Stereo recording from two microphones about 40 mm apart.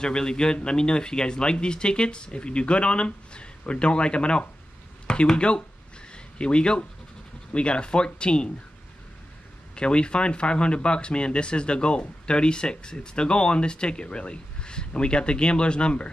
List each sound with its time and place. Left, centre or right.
0.0 s speech: centre
6.1 s a sound: left
7.5 s speech: left
9.8 s speech: left